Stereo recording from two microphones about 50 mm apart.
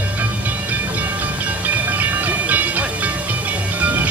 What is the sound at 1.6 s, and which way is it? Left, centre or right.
Music, right.